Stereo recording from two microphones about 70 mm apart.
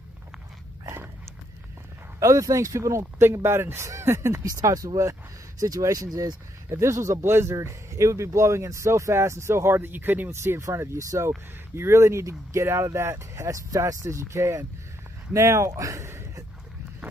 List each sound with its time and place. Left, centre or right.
2.1 s speech: right
3.2 s speech: right
4.5 s speech: right
6.7 s speech: right
9.8 s speech: right
10.3 s speech: right